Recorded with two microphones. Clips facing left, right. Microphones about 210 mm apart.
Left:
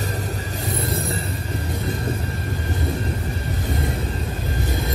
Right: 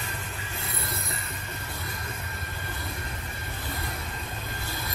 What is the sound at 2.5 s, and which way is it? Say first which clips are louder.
Vehicle: left 13 dB; 45° left (ahead or behind).